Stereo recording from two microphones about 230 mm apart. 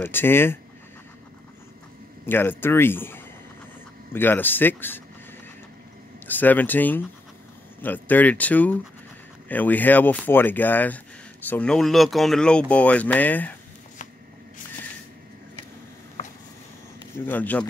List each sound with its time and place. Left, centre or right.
0.0 s speech: centre
2.2 s speech: centre
6.2 s speech: centre
16.2 s a sound: left
17.3 s speech: centre